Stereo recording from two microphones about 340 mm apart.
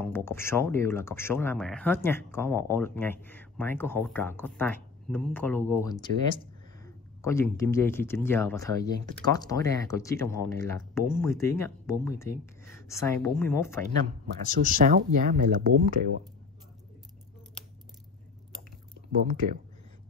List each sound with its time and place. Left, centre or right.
0.0 s speech: centre
14.7 s speech: right
19.1 s speech: right